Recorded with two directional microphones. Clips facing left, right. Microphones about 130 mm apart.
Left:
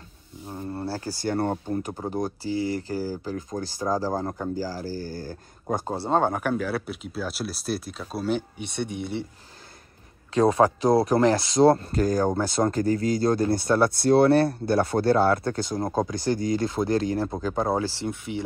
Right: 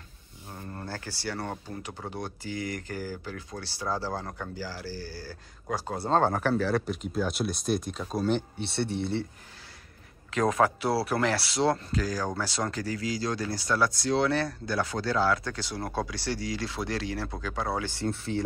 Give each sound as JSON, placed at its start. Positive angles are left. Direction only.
{"t": 0.5, "sound": "speech", "side_deg": 20}
{"t": 0.8, "sound": "speech", "side_deg": 35}
{"t": 6.0, "sound": "speech", "side_deg": 15}
{"t": 10.3, "sound": "speech", "side_deg": 35}
{"t": 11.9, "sound": "speech", "side_deg": 50}
{"t": 12.2, "sound": "speech", "side_deg": 25}
{"t": 12.7, "sound": "speech", "side_deg": 50}
{"t": 18.0, "sound": "speech", "side_deg": 15}